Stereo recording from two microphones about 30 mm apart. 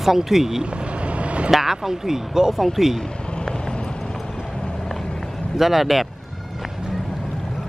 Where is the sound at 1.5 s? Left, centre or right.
Centre.